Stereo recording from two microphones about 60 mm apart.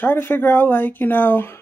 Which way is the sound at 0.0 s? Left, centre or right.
Left.